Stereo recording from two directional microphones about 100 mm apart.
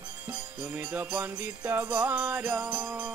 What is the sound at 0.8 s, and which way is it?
Music, 20° right (ahead or behind).